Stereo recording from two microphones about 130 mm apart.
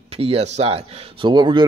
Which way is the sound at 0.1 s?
50° right (ahead or behind).